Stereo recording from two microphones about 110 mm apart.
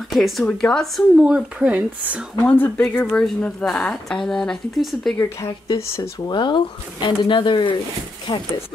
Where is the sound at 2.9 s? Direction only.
10° left (ahead or behind).